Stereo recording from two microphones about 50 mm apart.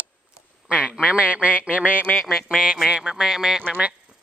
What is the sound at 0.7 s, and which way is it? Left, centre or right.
Speech, centre.